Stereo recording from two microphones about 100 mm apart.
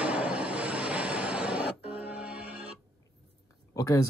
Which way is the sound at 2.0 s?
15° right (ahead or behind).